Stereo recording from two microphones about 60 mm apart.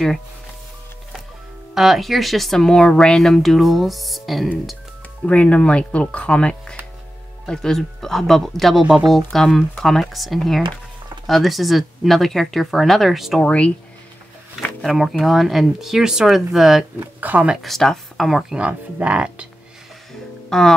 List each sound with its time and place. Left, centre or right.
1.7 s speech: centre
5.2 s speech: left; by 13.4 s centre
13.4 s speech: centre
14.8 s speech: centre
17.2 s speech: right
17.6 s speech: centre
18.6 s speech: right
20.1 s music: centre